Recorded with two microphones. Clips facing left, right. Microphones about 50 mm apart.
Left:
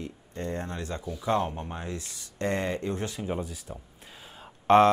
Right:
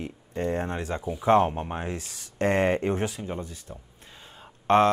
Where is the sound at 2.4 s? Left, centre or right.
Right.